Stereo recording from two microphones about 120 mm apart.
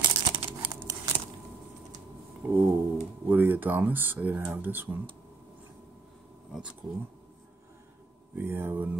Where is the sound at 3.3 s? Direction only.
15° right (ahead or behind).